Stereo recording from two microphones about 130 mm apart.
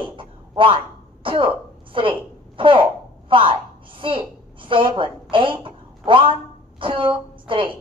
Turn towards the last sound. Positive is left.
turn(degrees=-40)  # may be behind; listen again after turning